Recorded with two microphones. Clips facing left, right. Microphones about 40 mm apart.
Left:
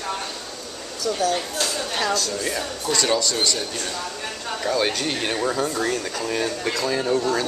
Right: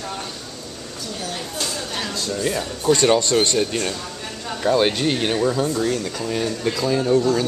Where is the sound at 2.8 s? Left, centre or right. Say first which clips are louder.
Right 6 dB; right.